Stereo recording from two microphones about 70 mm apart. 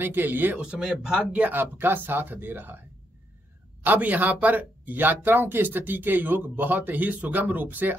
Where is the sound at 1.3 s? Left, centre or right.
Right.